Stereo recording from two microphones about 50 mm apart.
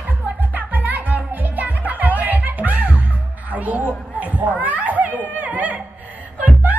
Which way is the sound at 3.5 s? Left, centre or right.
Right.